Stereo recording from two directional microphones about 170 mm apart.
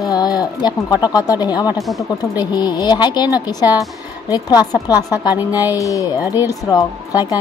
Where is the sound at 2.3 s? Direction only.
25° left (ahead or behind).